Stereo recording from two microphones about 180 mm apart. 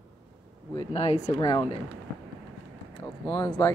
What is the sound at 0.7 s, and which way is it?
Speech, 35° left (ahead or behind).